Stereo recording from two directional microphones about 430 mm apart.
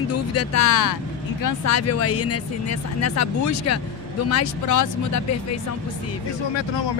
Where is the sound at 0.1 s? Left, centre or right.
Left.